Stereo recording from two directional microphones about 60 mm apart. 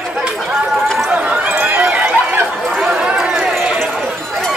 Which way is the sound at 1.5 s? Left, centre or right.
Right.